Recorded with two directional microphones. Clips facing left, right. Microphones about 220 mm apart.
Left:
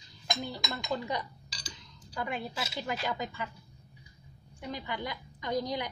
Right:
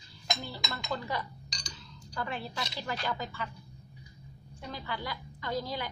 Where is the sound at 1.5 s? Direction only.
5° left (ahead or behind).